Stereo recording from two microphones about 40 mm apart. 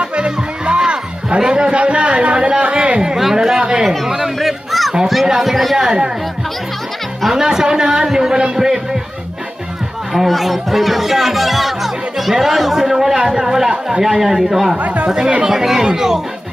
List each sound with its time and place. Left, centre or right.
0.0 s music: right
3.2 s a man's voice: centre
4.4 s a sound: centre
5.0 s speech: centre
5.8 s a man's voice: centre
7.2 s a man's voice: centre
10.1 s a man's voice: centre